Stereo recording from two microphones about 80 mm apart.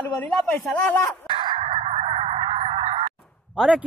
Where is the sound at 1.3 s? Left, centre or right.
Right.